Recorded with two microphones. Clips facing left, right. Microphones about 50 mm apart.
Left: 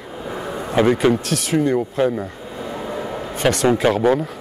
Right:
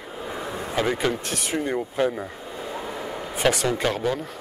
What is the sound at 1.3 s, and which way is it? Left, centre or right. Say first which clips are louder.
Speech: left 8 dB; centre.